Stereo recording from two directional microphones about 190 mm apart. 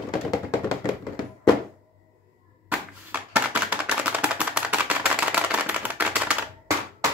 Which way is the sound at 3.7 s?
10° right (ahead or behind).